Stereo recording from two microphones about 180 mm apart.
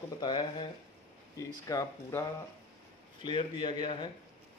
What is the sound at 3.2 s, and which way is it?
Speech, 25° left (ahead or behind).